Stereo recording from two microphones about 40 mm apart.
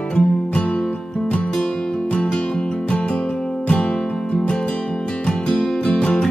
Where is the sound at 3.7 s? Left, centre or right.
Left.